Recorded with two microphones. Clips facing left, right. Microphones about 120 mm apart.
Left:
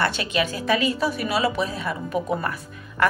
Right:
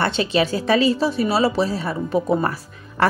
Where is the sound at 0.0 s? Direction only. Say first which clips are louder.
Right 4 dB; 30° right (ahead or behind).